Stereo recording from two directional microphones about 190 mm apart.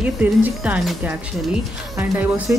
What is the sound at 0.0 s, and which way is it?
A woman's voice, 10° right (ahead or behind).